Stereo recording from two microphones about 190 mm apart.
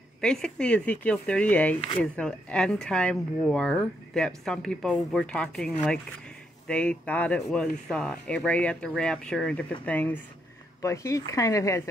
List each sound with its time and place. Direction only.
0.2 s speech: 5° left (ahead or behind)